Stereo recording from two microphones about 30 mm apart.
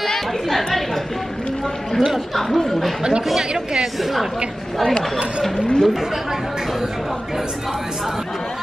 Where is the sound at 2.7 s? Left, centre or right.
Centre.